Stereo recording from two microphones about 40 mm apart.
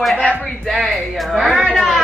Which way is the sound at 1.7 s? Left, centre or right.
Centre.